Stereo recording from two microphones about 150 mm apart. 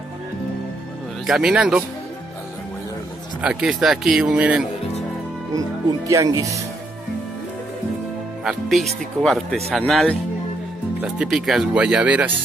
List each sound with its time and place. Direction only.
1.2 s speech: 5° right (ahead or behind)
3.3 s speech: 5° right (ahead or behind)
5.5 s speech: 20° right (ahead or behind)
8.5 s speech: centre (ahead or behind)